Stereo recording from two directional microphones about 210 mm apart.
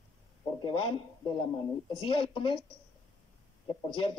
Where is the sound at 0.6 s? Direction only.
25° left (ahead or behind).